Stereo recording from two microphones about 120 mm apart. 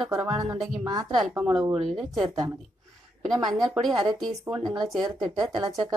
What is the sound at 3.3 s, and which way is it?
A woman's voice, 35° right (ahead or behind).